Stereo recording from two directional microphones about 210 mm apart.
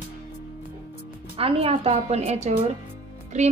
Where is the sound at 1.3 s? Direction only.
25° right (ahead or behind).